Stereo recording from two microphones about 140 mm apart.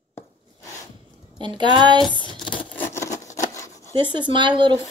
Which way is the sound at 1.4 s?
35° right (ahead or behind).